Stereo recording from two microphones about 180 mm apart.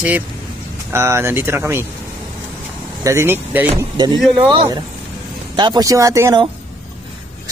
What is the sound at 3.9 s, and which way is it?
Speech, 25° right (ahead or behind).